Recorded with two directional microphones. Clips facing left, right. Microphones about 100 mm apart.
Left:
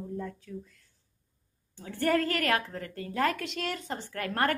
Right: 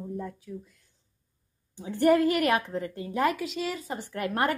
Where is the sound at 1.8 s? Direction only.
15° right (ahead or behind).